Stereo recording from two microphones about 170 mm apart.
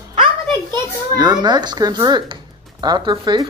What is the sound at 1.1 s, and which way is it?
Speech, 25° right (ahead or behind).